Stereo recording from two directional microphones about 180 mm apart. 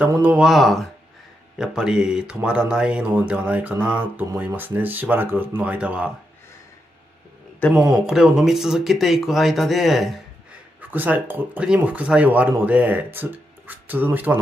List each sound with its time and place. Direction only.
0.0 s speech: 10° right (ahead or behind)
7.7 s speech: 15° right (ahead or behind)
8.1 s speech: 5° right (ahead or behind)